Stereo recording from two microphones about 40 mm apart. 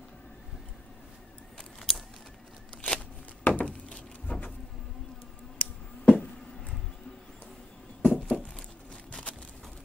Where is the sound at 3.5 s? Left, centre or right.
Left.